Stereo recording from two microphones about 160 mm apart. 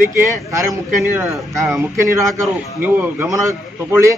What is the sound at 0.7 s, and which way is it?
Speech, 20° right (ahead or behind).